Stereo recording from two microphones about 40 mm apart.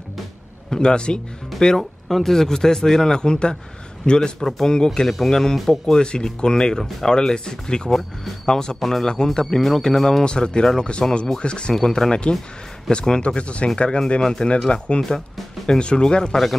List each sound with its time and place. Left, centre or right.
0.7 s speech: left
1.8 s a man's voice: centre; by 4.3 s left
4.4 s speech: centre
5.0 s speech: centre
8.7 s speech: centre
9.0 s speech: centre
10.2 s speech: left
11.7 s speech: centre
15.8 s speech: left